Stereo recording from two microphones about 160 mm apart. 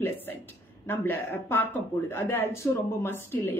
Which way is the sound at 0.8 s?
15° left (ahead or behind).